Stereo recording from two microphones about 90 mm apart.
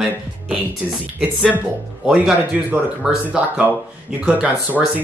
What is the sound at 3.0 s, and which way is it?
Speech, 10° right (ahead or behind).